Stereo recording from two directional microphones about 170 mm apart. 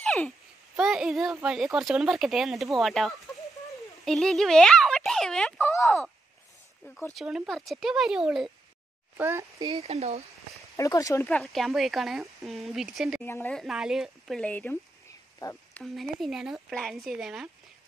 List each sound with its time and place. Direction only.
0.0 s a sound: 10° left (ahead or behind)
0.7 s speech: 5° right (ahead or behind)
7.2 s speech: centre (ahead or behind)
9.1 s a child's voice: 15° right (ahead or behind)
9.8 s speech: 40° right (ahead or behind)
10.8 s speech: 20° left (ahead or behind)
11.2 s speech: 5° left (ahead or behind)
13.2 s speech: 10° left (ahead or behind)
15.3 s a sound: 15° left (ahead or behind)
15.8 s speech: centre (ahead or behind)